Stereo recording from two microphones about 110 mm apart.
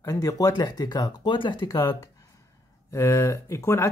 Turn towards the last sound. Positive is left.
turn(degrees=20)  # may be behind; listen again after turning